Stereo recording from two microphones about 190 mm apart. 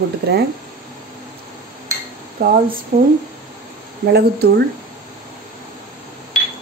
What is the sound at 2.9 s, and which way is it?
Speech, 45° right (ahead or behind).